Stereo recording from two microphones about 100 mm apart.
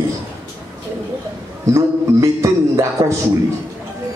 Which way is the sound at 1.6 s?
30° right (ahead or behind).